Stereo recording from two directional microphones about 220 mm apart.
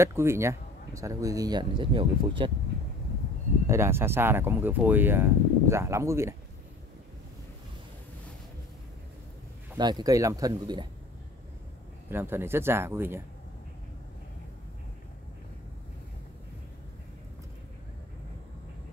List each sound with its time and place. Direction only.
0.0 s speech: 10° right (ahead or behind)
3.6 s speech: 10° right (ahead or behind)
9.8 s speech: 20° right (ahead or behind)
12.1 s speech: 10° right (ahead or behind)